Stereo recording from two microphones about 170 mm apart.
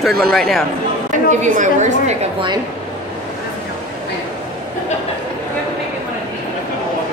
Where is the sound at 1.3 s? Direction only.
45° right (ahead or behind).